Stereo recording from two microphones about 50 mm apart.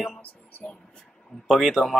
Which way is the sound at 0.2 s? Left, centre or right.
Left.